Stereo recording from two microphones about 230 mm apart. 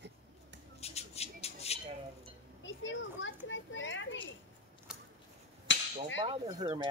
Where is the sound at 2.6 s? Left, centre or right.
Left.